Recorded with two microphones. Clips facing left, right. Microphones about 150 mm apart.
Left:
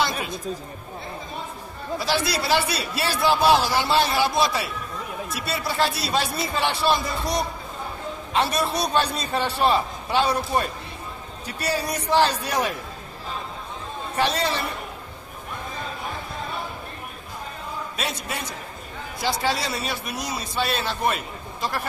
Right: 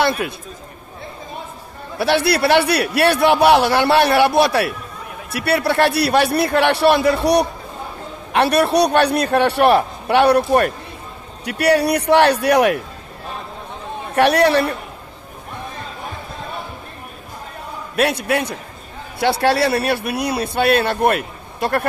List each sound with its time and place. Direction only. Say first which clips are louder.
0.0 s a man's voice: right 7 dB; 65° right (ahead or behind)
2.0 s a man's voice: right 9 dB; 65° right (ahead or behind)
14.1 s a man's voice: right 10 dB; 65° right (ahead or behind)
17.9 s a man's voice: right 16 dB; 65° right (ahead or behind)